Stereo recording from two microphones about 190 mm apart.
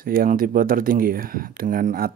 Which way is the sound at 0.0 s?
50° right (ahead or behind).